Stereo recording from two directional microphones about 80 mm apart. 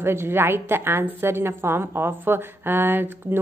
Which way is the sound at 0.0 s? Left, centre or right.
Right.